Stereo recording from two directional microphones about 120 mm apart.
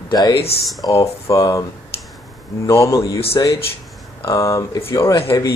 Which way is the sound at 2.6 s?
25° left (ahead or behind).